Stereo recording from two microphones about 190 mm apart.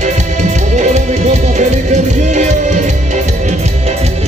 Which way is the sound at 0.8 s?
40° right (ahead or behind).